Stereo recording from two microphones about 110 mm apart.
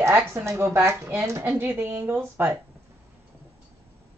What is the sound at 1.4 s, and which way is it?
Speech, 20° right (ahead or behind).